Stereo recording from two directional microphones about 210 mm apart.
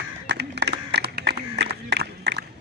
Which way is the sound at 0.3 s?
55° right (ahead or behind).